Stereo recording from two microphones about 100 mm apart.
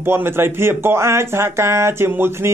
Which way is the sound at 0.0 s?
25° right (ahead or behind).